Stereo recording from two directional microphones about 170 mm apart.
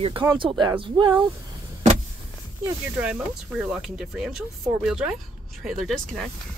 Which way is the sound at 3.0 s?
5° right (ahead or behind).